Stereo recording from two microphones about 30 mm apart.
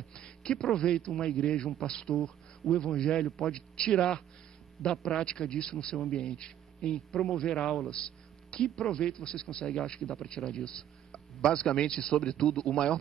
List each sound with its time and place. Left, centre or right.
0.1 s a man's voice: left
1.7 s a man's voice: centre
2.7 s speech: left